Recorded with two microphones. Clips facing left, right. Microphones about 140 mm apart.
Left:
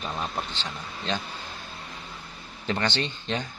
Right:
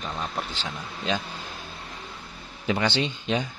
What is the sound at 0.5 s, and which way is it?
Speech, 10° right (ahead or behind).